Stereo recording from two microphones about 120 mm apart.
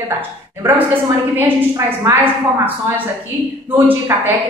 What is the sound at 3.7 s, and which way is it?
Speech, 15° right (ahead or behind).